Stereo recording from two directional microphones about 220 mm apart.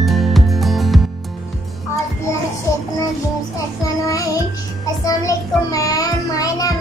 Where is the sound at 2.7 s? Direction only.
15° left (ahead or behind).